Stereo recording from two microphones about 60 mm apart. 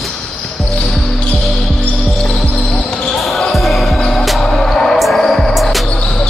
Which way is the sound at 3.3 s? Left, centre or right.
Centre.